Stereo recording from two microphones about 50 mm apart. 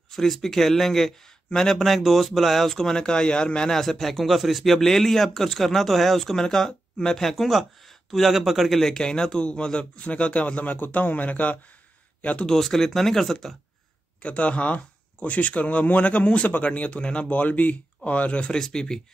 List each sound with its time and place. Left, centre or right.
0.1 s speech: centre
3.7 s a man's voice: centre
8.8 s a man's voice: centre
12.4 s speech: centre
14.2 s a man's voice: left
18.5 s speech: centre